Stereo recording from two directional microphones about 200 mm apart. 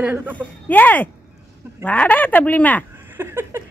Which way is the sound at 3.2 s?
10° right (ahead or behind).